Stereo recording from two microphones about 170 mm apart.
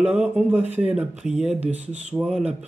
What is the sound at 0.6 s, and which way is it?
Speech, 40° right (ahead or behind).